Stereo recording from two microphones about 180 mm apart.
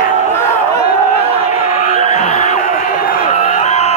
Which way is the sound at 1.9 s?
40° left (ahead or behind).